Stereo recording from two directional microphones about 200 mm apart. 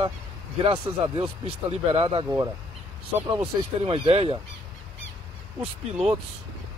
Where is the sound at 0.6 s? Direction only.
25° right (ahead or behind).